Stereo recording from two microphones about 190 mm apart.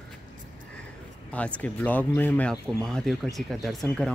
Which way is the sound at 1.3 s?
5° left (ahead or behind).